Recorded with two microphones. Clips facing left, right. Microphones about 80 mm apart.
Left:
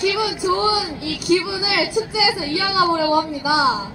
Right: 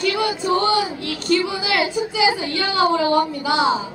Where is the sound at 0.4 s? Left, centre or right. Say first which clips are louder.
Even; centre.